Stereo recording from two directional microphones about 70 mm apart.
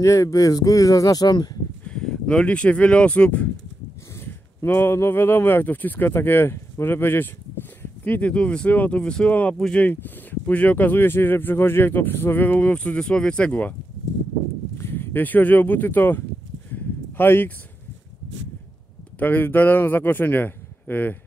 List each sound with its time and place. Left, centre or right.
0.0 s speech: left
1.9 s speech: centre
4.2 s speech: left
8.0 s speech: left
14.8 s speech: left
16.7 s a sound: left
19.1 s speech: left